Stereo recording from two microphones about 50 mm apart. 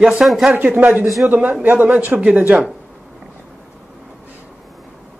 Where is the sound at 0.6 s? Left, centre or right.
Right.